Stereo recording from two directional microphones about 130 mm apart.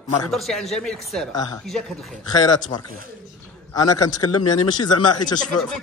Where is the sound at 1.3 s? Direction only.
30° left (ahead or behind).